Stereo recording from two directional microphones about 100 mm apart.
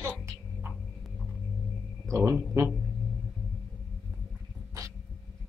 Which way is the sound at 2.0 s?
25° right (ahead or behind).